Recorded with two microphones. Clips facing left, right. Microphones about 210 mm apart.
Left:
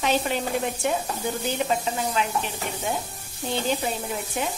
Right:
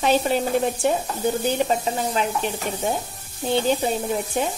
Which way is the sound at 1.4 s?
35° right (ahead or behind).